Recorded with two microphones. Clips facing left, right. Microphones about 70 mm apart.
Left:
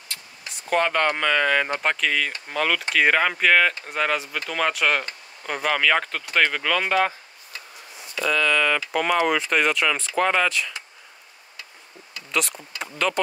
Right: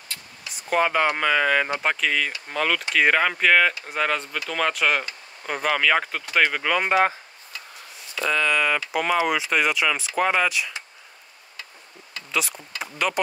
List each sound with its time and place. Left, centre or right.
0.5 s speech: centre
6.9 s speech: right
8.3 s speech: right
9.0 s speech: centre
12.3 s speech: centre